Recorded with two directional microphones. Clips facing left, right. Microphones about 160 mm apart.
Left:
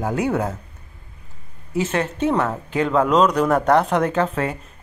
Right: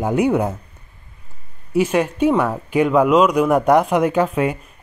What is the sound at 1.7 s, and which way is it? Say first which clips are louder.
Speech: right 5 dB; 10° right (ahead or behind).